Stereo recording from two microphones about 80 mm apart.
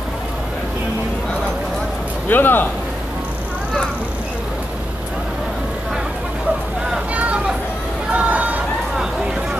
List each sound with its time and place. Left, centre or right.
2.2 s speech: left
7.2 s vehicle: centre
8.1 s chatter: centre